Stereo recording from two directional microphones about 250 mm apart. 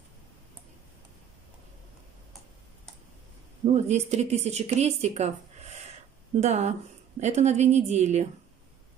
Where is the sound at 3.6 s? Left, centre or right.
Right.